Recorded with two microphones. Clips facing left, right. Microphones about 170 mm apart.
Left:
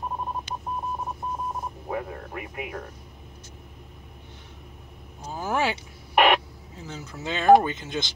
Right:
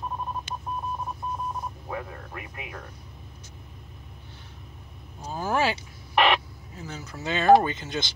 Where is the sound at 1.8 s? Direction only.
10° left (ahead or behind).